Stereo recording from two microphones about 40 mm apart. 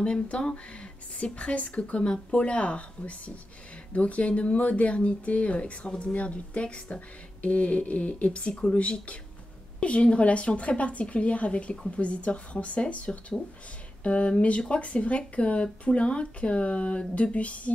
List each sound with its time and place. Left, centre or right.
0.0 s speech: left